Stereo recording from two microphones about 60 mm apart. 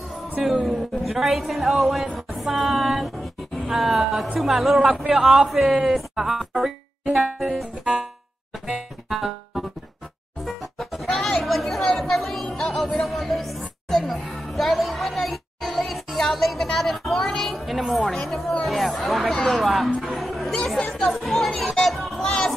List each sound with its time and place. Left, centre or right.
0.7 s speech: centre
2.1 s a sound: centre
3.5 s a man's voice: centre
7.3 s speech: centre
7.8 s music: centre
11.1 s chatter: centre
12.5 s speech: centre
22.2 s chatter: centre